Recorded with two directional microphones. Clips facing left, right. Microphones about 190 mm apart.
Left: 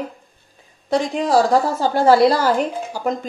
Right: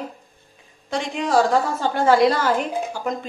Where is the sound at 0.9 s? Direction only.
40° left (ahead or behind).